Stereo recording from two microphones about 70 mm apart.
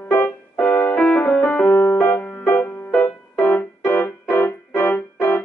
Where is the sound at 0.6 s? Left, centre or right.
Left.